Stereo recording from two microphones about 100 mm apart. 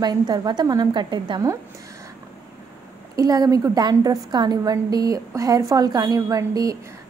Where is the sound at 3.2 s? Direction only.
40° right (ahead or behind).